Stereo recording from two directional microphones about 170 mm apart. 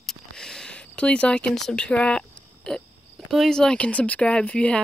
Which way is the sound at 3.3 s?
Centre (ahead or behind).